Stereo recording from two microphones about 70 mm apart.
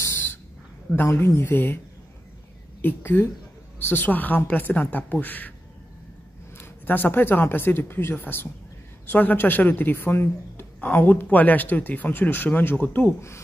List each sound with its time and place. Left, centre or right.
0.0 s a sound: left
0.9 s speech: left
2.8 s speech: left
6.6 s speech: left